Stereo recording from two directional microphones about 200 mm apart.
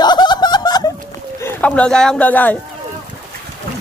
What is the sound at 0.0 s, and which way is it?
Snicker, 20° left (ahead or behind).